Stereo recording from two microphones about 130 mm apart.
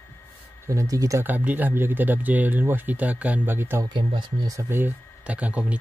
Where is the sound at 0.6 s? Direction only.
25° right (ahead or behind).